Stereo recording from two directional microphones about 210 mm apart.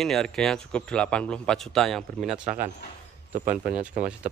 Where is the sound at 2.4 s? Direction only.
35° right (ahead or behind).